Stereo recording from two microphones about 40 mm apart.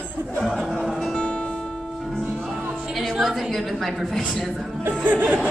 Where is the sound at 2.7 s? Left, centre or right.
Centre.